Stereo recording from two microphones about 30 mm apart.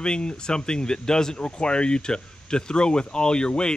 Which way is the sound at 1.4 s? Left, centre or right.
Left.